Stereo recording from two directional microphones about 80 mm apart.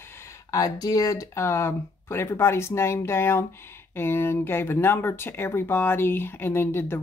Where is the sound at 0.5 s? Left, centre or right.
Left.